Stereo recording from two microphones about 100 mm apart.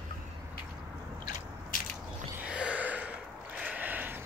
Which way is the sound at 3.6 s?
15° right (ahead or behind).